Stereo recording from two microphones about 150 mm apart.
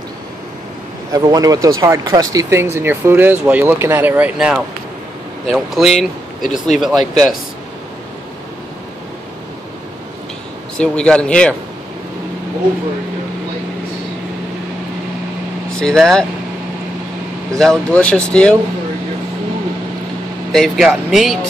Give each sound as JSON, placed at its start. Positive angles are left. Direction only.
{"t": 1.1, "sound": "speech", "side_deg": -25}
{"t": 10.8, "sound": "speech", "side_deg": 5}
{"t": 15.7, "sound": "speech", "side_deg": 5}
{"t": 17.6, "sound": "speech", "side_deg": 5}
{"t": 20.5, "sound": "speech", "side_deg": 0}